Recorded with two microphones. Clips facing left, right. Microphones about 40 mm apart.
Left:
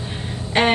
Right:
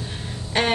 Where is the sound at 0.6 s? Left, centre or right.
Centre.